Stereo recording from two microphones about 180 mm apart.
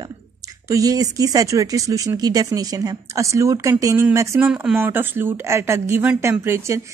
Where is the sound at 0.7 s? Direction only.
20° right (ahead or behind).